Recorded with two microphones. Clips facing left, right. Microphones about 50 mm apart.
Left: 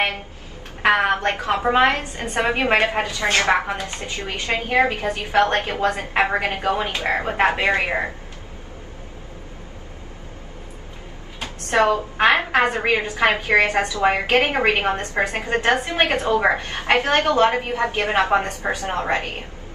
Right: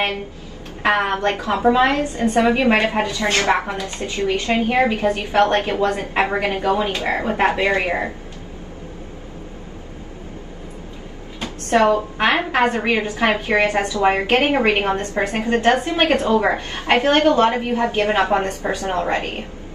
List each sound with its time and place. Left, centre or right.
1.0 s a woman's voice: left
4.9 s a woman's voice: right
5.2 s a woman's voice: left
11.3 s a woman's voice: left